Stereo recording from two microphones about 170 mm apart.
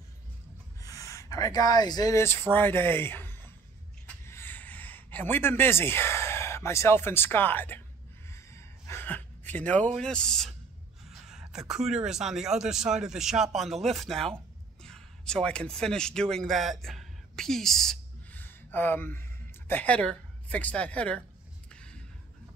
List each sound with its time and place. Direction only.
0.7 s speech: 20° left (ahead or behind)
4.3 s a sound: 15° left (ahead or behind)
8.3 s gasp: 15° left (ahead or behind)
9.9 s a man's voice: 5° left (ahead or behind)